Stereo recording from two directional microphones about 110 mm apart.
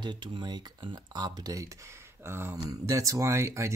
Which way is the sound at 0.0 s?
40° right (ahead or behind).